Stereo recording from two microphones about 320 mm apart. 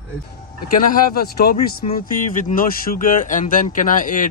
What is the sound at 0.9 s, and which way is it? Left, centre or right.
Speech, left.